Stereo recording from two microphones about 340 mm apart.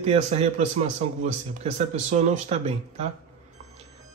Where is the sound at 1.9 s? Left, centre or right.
Centre.